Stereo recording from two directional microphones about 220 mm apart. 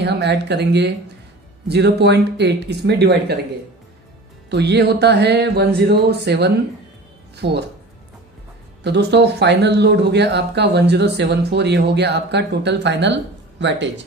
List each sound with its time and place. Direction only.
0.0 s speech: 50° right (ahead or behind)
4.5 s speech: 50° right (ahead or behind)
8.8 s speech: 50° right (ahead or behind)